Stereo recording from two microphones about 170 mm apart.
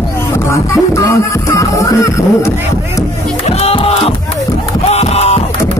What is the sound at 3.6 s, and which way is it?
Music, 35° left (ahead or behind).